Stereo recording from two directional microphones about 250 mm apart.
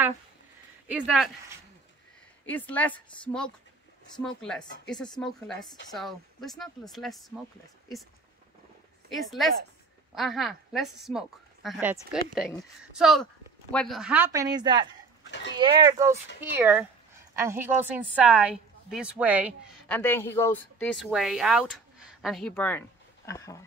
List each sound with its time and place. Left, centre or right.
0.8 s a woman's voice: centre
2.4 s a woman's voice: centre
9.1 s a woman's voice: centre
19.9 s speech: centre